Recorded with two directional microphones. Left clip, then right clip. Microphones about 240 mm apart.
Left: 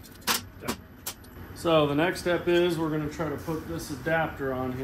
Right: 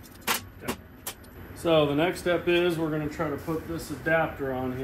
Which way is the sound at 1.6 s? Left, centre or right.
Centre.